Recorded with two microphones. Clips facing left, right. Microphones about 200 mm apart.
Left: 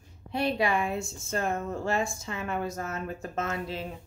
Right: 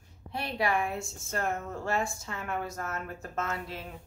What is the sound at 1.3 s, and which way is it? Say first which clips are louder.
Speech: left 3 dB; 20° left (ahead or behind).